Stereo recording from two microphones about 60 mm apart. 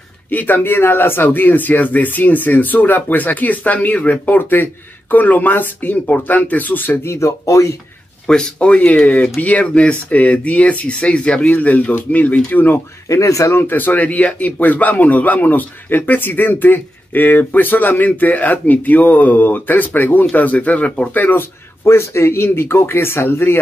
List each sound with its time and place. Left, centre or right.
0.3 s speech: left
7.1 s speech: left
8.3 s speech: centre; by 12.8 s left
13.1 s speech: left
13.6 s speech: left
21.8 s speech: left